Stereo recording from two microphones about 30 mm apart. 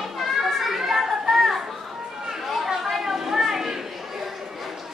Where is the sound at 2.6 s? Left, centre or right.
Centre.